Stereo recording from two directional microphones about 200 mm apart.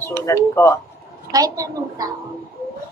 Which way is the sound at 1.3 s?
15° right (ahead or behind).